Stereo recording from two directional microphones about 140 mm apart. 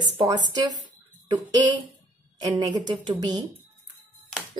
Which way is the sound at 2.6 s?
30° right (ahead or behind).